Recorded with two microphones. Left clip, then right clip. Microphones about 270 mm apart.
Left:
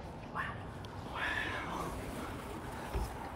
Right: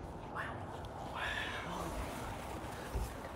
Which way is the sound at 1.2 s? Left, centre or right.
Left.